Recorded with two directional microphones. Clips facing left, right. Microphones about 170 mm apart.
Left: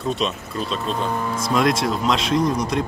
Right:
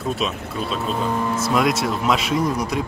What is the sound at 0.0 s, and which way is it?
Speech, centre (ahead or behind).